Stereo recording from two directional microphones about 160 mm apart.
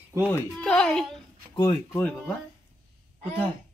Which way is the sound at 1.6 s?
15° left (ahead or behind).